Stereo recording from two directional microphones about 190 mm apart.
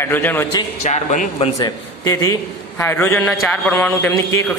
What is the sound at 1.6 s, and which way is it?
A man's voice, 20° left (ahead or behind).